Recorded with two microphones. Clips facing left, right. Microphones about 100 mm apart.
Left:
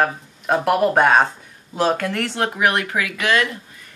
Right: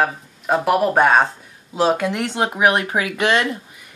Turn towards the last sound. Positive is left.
turn(degrees=-25)  # may be behind; listen again after turning